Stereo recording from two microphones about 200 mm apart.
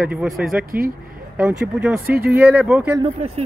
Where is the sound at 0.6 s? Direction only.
45° right (ahead or behind).